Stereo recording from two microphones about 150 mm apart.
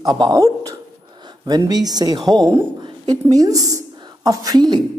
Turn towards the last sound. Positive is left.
turn(degrees=-25)  # may be behind; listen again after turning